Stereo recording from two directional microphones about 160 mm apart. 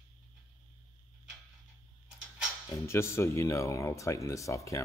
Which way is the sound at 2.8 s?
15° left (ahead or behind).